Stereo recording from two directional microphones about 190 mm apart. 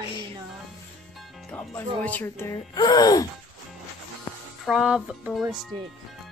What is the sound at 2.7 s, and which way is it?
Gasp, 20° left (ahead or behind).